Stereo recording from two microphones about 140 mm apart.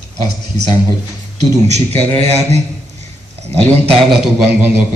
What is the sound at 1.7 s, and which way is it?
A man's voice, 50° right (ahead or behind).